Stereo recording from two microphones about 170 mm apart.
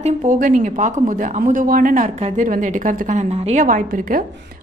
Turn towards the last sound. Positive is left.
turn(degrees=-55)  # may be behind; listen again after turning